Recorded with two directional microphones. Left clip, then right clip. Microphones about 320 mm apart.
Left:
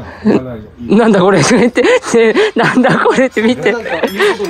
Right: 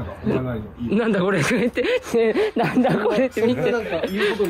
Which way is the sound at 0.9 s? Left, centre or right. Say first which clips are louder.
Left 12 dB; centre.